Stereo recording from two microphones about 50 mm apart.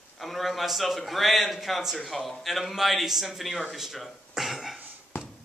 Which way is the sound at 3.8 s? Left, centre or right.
Centre.